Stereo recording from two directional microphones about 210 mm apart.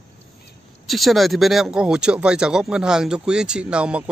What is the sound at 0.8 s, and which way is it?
Speech, centre (ahead or behind).